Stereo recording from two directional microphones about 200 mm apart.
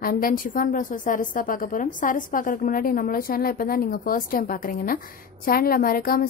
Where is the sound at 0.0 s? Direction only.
45° left (ahead or behind).